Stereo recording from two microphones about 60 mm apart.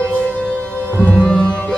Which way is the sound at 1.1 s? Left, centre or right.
Centre.